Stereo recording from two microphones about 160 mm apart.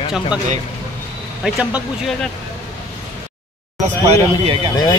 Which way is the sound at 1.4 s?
5° right (ahead or behind).